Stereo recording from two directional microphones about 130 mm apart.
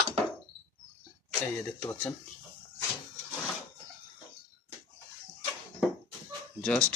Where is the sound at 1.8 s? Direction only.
15° left (ahead or behind).